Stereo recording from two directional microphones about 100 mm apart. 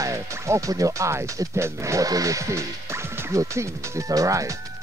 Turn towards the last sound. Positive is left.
turn(degrees=-35)  # may be behind; listen again after turning